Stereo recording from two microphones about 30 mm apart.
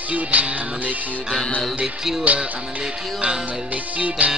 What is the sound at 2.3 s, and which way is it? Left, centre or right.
Speech, right.